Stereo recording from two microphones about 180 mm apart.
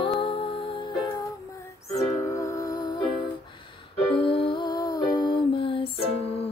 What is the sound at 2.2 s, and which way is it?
Music, 15° left (ahead or behind).